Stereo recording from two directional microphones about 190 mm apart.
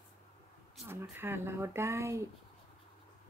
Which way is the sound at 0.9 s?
10° right (ahead or behind).